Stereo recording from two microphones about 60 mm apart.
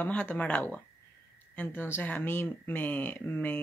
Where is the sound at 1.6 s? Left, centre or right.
Left.